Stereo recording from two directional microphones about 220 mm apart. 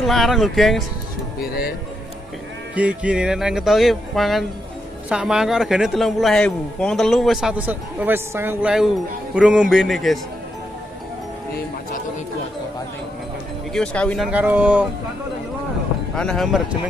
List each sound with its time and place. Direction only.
0.0 s speech: centre (ahead or behind)
1.4 s speech: 45° left (ahead or behind)
2.7 s speech: 5° right (ahead or behind)
13.7 s speech: 5° left (ahead or behind)
16.2 s speech: centre (ahead or behind)